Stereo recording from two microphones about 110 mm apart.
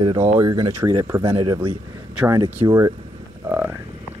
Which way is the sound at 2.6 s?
30° right (ahead or behind).